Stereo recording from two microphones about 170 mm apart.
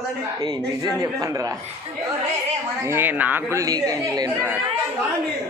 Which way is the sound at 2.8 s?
15° right (ahead or behind).